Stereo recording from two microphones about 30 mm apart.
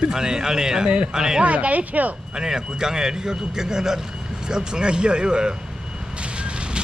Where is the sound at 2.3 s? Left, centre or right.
Right.